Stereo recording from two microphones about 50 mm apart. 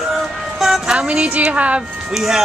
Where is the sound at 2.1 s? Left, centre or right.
Centre.